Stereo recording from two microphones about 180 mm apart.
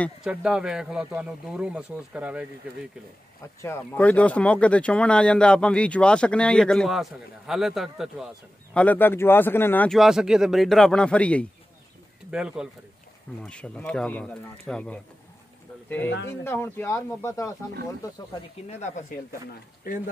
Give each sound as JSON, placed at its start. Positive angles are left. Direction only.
{"t": 0.2, "sound": "speech", "side_deg": -5}
{"t": 3.6, "sound": "speech", "side_deg": 10}
{"t": 8.7, "sound": "speech", "side_deg": 10}
{"t": 9.9, "sound": "speech", "side_deg": -5}
{"t": 12.3, "sound": "speech", "side_deg": -5}
{"t": 13.4, "sound": "speech", "side_deg": 5}
{"t": 16.3, "sound": "speech", "side_deg": 15}
{"t": 18.7, "sound": "speech", "side_deg": 40}